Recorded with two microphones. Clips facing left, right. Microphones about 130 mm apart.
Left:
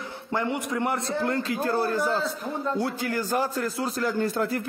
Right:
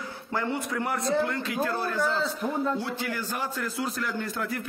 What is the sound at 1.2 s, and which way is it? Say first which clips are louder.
A man's voice: left 3 dB; 35° left (ahead or behind).